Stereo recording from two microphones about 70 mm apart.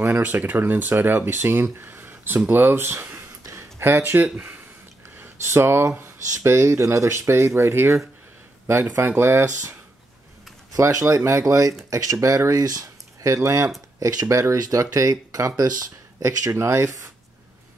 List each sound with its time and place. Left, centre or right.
0.0 s speech: right
3.8 s speech: right
10.7 s speech: right